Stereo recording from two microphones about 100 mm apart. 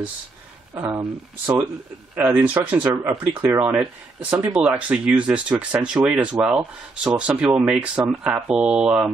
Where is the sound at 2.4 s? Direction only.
15° right (ahead or behind).